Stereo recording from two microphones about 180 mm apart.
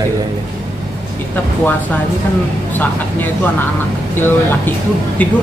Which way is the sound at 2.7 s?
10° left (ahead or behind).